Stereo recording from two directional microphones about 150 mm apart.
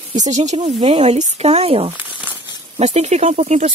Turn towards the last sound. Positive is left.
turn(degrees=-50)  # may be behind; listen again after turning